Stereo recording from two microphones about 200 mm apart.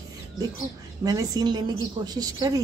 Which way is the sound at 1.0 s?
20° right (ahead or behind).